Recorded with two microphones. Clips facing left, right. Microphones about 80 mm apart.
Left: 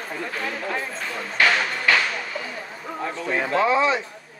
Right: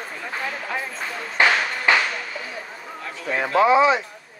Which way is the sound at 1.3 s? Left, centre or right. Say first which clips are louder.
Right 1 dB; right.